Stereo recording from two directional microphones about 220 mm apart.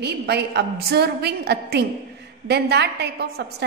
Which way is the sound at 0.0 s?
50° right (ahead or behind).